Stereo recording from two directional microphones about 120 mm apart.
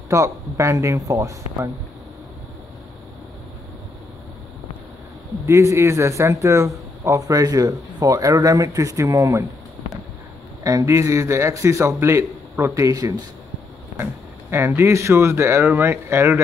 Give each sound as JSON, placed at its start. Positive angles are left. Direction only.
{"t": 0.1, "sound": "a man's voice", "side_deg": -25}
{"t": 5.5, "sound": "a man's voice", "side_deg": -25}
{"t": 10.6, "sound": "a man's voice", "side_deg": -30}
{"t": 14.5, "sound": "a man's voice", "side_deg": -20}